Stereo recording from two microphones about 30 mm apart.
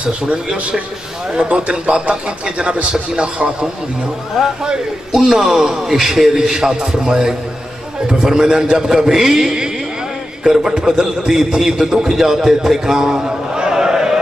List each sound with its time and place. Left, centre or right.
0.5 s a man's voice: right
4.4 s a man's voice: centre
5.1 s a man's voice: centre
9.1 s a man's voice: centre
10.7 s a man's voice: right
13.2 s a sound: right